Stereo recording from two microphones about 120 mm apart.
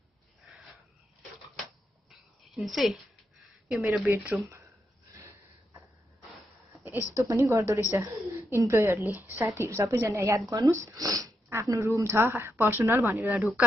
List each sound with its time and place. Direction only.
2.0 s a sound: centre (ahead or behind)
3.7 s speech: 10° right (ahead or behind)
5.1 s gasp: 25° right (ahead or behind)
7.2 s a woman's voice: 25° right (ahead or behind)
13.4 s speech: centre (ahead or behind)